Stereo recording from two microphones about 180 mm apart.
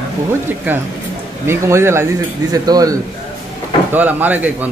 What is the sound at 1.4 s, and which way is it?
Speech, 15° right (ahead or behind).